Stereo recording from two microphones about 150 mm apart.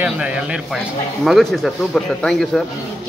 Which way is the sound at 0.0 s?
10° right (ahead or behind).